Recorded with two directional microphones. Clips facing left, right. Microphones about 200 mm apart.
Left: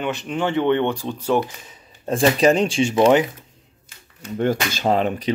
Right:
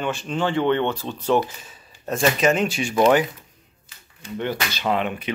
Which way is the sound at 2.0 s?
30° left (ahead or behind).